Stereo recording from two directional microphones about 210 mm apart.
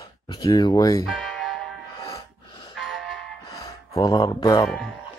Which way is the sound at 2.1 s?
20° left (ahead or behind).